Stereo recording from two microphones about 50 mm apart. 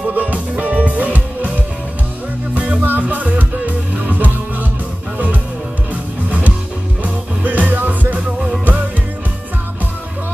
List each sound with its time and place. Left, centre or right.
0.1 s music: right
2.5 s music: right
7.0 s music: right